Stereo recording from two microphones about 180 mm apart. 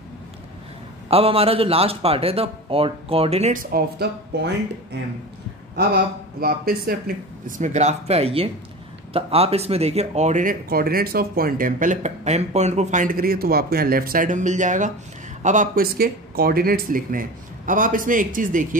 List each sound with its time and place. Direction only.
1.1 s a man's voice: 30° right (ahead or behind)
3.7 s speech: 65° right (ahead or behind)
6.4 s speech: 55° right (ahead or behind)
7.4 s a man's voice: 45° right (ahead or behind)